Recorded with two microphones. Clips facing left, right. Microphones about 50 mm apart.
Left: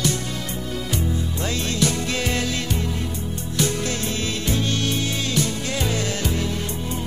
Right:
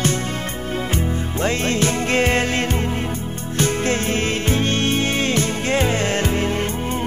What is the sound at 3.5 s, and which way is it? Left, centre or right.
Music, right.